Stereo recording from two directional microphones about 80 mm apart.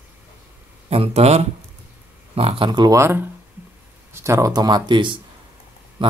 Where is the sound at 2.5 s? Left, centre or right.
Right.